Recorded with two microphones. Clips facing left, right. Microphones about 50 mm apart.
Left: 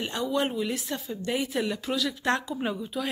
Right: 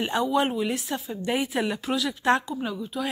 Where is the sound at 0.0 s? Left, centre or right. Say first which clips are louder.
Right 4 dB; centre.